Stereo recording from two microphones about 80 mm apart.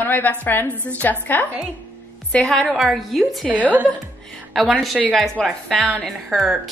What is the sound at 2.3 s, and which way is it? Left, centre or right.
Speech, centre.